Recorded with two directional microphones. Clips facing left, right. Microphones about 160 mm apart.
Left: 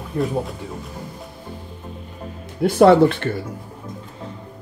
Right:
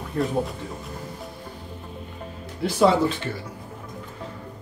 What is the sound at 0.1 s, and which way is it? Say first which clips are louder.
Speech: left 3 dB; 5° left (ahead or behind).